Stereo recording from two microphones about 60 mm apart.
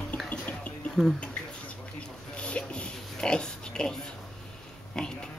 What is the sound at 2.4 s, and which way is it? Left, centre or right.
Oink, centre.